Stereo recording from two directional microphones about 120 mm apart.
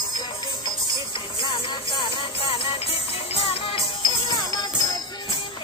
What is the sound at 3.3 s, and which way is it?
Music, 50° left (ahead or behind).